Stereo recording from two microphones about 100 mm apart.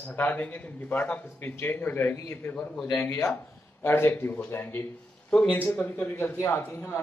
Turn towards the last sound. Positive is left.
turn(degrees=20)  # may be behind; listen again after turning